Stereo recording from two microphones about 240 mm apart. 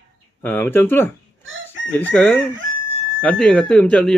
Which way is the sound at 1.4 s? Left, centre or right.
Right.